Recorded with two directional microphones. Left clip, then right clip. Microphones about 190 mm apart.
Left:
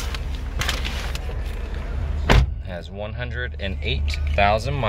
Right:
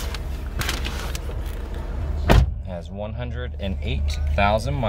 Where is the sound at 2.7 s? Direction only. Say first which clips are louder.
Even; 15° right (ahead or behind).